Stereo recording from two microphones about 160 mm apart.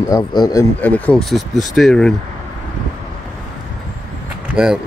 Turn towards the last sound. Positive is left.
turn(degrees=-5)  # may be behind; listen again after turning